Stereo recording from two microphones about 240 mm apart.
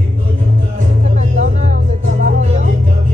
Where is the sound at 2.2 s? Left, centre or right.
Right.